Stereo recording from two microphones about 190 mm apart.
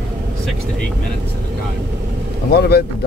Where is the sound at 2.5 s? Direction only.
55° left (ahead or behind).